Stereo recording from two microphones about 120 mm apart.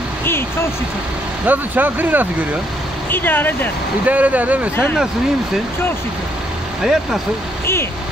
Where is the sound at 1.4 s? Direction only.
15° right (ahead or behind).